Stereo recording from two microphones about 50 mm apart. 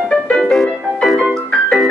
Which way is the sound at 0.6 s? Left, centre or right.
Centre.